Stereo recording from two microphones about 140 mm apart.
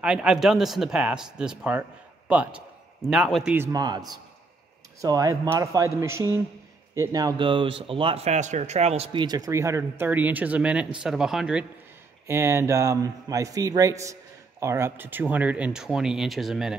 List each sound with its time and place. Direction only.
0.0 s speech: 5° right (ahead or behind)
3.5 s speech: 20° right (ahead or behind)
5.0 s a man's voice: 25° right (ahead or behind); by 9.2 s 45° right (ahead or behind)
9.2 s speech: 30° right (ahead or behind); by 11.6 s 5° right (ahead or behind)
12.3 s a man's voice: 20° right (ahead or behind); by 16.7 s centre (ahead or behind)